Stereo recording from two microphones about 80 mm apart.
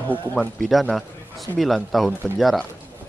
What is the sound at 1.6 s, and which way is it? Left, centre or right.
Speech, centre.